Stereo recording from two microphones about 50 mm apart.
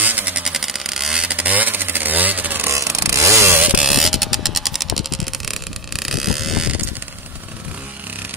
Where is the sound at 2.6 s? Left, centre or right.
Right.